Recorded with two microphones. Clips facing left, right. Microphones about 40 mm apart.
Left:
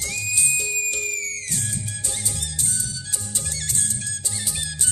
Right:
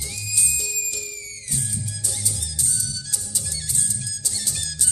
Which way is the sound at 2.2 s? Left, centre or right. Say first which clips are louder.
Left 1 dB; left.